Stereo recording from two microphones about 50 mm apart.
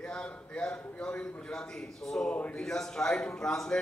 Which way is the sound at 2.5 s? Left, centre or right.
Centre.